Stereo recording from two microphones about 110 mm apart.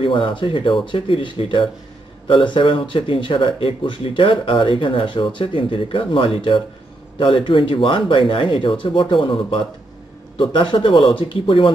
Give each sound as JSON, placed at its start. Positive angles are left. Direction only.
{"t": 0.0, "sound": "speech", "side_deg": 50}